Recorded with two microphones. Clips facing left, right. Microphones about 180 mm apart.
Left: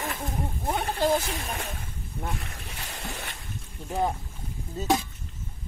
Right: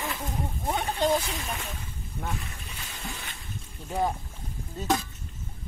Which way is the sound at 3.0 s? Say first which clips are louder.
Left 2 dB; 65° left (ahead or behind).